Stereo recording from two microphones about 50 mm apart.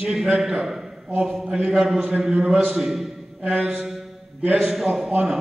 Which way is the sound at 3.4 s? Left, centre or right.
Right.